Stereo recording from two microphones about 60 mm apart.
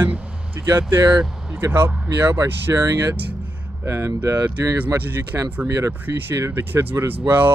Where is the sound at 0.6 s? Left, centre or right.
Right.